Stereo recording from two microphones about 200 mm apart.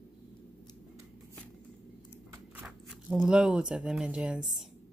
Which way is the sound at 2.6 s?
5° right (ahead or behind).